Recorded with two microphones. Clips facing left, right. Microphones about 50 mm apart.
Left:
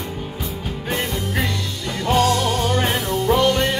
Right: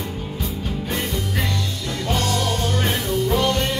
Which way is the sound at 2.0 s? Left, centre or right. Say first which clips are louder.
Left 6 dB; centre.